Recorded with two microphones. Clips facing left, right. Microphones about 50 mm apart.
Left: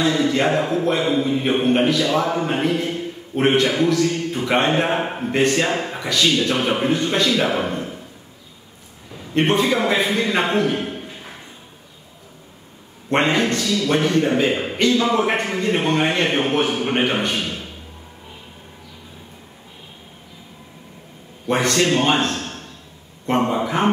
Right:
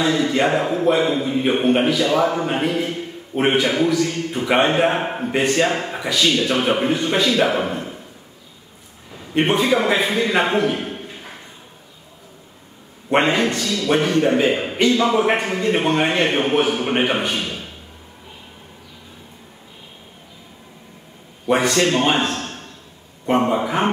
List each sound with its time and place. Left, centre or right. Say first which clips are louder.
0.0 s a man's voice: even; centre
9.1 s a man's voice: even; centre
13.1 s a man's voice: right 1 dB; centre
21.5 s a man's voice: right 1 dB; centre